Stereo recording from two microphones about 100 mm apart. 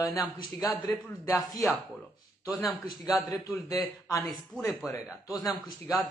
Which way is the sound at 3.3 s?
30° left (ahead or behind).